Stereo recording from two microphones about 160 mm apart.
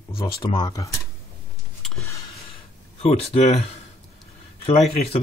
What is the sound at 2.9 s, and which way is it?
Speech, 40° left (ahead or behind).